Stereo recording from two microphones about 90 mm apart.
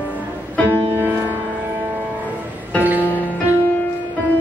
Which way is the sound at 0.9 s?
25° right (ahead or behind).